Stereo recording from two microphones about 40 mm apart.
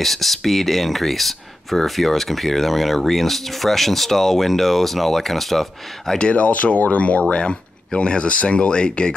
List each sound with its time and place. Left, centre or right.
0.0 s speech: centre
6.1 s speech: left